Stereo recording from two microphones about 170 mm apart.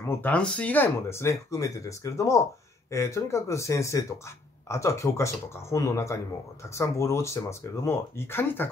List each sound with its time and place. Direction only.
0.0 s speech: 10° left (ahead or behind)